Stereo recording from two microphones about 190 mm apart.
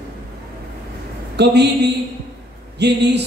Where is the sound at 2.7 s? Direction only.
60° right (ahead or behind).